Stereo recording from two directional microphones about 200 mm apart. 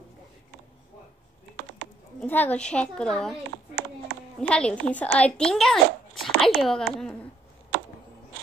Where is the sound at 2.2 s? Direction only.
10° left (ahead or behind).